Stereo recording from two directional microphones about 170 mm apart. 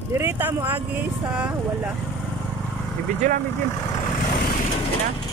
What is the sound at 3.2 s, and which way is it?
Speech, 45° right (ahead or behind).